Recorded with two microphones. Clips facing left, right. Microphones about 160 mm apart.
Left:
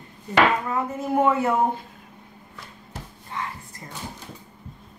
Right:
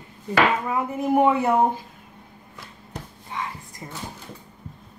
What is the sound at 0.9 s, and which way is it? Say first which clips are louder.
Speech: right 3 dB; 15° right (ahead or behind).